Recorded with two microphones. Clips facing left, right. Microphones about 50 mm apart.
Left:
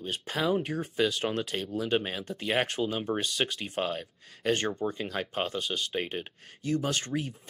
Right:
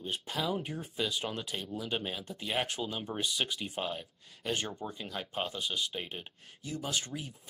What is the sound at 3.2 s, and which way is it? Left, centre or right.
Speech, left.